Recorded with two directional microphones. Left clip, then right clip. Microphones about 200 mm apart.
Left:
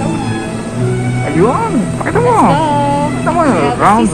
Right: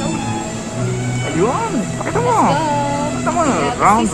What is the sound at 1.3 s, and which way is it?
Speech, centre (ahead or behind).